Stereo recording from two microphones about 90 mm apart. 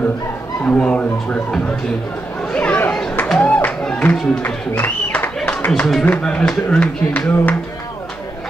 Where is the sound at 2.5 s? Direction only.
15° left (ahead or behind).